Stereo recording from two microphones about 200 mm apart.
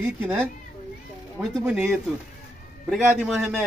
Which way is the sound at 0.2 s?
10° right (ahead or behind).